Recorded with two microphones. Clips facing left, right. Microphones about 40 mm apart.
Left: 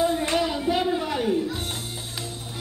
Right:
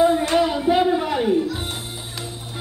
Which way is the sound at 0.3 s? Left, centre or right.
Centre.